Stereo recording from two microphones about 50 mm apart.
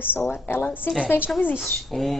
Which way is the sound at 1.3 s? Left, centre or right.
Centre.